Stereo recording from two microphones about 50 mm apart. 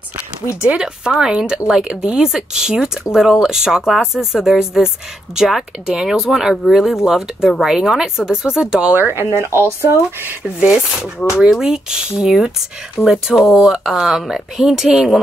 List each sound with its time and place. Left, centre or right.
0.7 s speech: centre
9.0 s speech: right
10.7 s speech: centre